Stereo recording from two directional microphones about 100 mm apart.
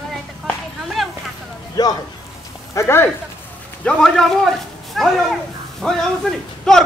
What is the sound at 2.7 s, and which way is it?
Speech, 25° left (ahead or behind).